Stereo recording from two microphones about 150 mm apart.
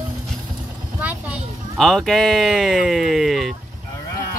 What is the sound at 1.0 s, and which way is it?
Speech, 10° right (ahead or behind).